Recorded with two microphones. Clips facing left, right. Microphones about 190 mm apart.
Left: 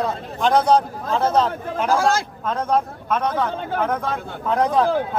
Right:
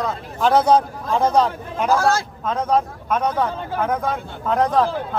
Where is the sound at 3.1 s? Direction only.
10° right (ahead or behind).